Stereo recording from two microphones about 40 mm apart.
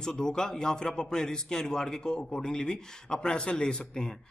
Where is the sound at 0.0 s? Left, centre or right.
Centre.